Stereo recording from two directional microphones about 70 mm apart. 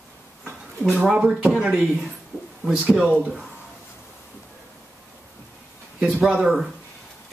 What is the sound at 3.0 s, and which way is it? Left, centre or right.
Speech, centre.